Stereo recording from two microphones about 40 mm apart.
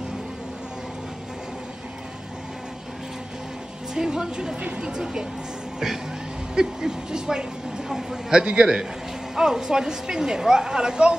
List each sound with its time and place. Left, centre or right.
3.9 s speech: centre
6.5 s speech: centre